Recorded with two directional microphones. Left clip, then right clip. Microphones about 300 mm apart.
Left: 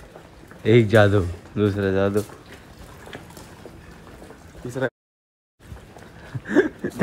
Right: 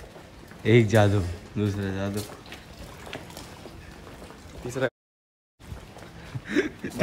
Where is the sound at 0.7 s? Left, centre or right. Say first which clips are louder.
Left 5 dB; centre.